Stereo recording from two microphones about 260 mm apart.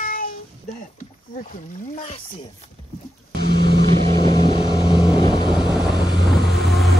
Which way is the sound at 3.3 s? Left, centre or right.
Right.